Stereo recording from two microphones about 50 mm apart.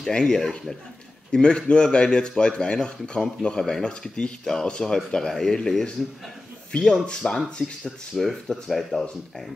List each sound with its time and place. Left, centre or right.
0.1 s speech: centre